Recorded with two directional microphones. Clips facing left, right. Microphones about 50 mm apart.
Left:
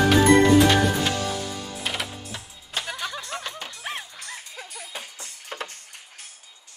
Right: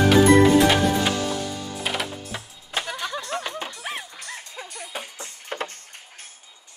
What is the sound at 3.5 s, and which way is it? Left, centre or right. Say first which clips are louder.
Music: right 5 dB; right.